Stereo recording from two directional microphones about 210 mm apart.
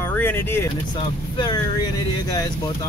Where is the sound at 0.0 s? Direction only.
10° left (ahead or behind).